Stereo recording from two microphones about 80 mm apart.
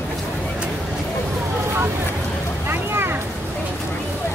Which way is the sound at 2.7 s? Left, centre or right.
Right.